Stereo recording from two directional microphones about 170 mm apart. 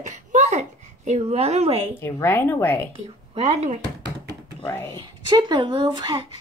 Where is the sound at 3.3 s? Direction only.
40° right (ahead or behind).